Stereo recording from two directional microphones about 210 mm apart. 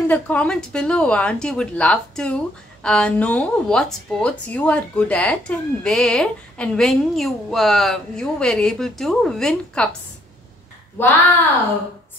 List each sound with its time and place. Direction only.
0.1 s speech: 5° left (ahead or behind)
11.0 s a woman's voice: 10° left (ahead or behind)